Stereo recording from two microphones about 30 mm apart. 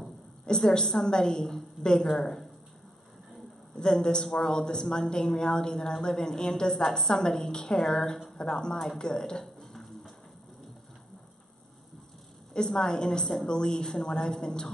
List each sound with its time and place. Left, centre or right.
0.5 s a woman's voice: left
1.0 s a woman's voice: left
3.7 s a woman's voice: left
8.9 s music: left; by 10.1 s centre
12.6 s a woman's voice: left